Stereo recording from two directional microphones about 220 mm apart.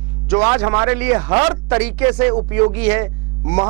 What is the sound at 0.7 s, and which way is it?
Speech, 25° right (ahead or behind).